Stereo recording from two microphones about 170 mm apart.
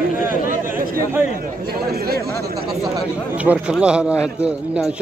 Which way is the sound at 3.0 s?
5° right (ahead or behind).